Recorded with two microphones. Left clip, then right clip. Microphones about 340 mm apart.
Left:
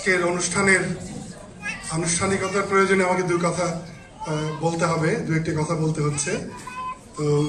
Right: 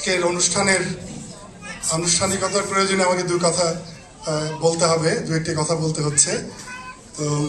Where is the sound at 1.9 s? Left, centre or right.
Centre.